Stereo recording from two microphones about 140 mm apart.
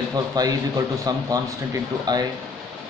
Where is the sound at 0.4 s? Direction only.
25° right (ahead or behind).